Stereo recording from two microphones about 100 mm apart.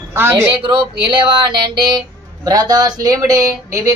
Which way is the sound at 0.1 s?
25° right (ahead or behind).